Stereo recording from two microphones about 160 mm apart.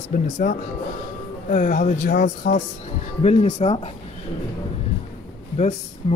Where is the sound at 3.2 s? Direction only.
45° left (ahead or behind).